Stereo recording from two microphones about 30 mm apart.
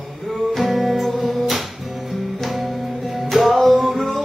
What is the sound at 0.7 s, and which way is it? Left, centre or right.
Music, centre.